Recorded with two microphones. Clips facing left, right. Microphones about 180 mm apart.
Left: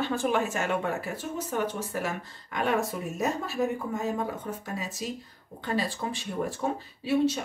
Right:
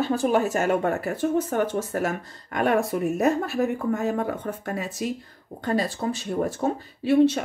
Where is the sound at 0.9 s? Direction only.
55° right (ahead or behind).